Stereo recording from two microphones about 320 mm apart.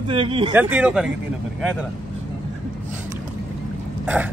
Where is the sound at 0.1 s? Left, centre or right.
Centre.